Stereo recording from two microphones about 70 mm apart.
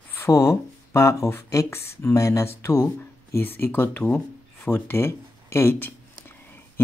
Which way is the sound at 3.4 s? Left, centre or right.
Left.